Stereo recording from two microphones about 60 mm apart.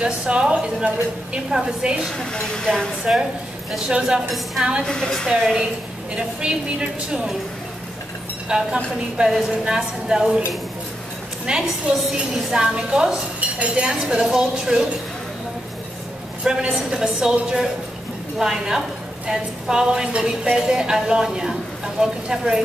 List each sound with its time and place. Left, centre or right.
0.0 s a woman's voice: centre
2.1 s speech: centre
4.3 s a woman's voice: centre
4.8 s speech: centre
5.3 s a woman's voice: centre
8.5 s a woman's voice: centre
11.4 s a woman's voice: centre
16.7 s a woman's voice: centre